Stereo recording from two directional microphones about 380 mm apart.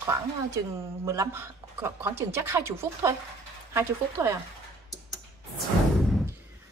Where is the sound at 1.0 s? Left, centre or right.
Centre.